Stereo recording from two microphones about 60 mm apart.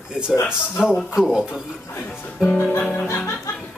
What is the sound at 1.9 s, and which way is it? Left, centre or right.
Speech, left.